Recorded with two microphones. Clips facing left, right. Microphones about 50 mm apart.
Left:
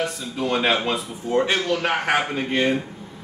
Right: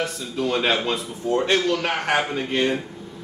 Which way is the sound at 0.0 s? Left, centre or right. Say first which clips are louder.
Even; centre.